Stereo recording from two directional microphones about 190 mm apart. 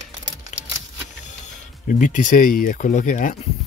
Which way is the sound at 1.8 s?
45° left (ahead or behind).